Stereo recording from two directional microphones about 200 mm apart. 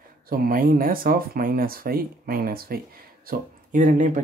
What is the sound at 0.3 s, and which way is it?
Speech, 45° right (ahead or behind).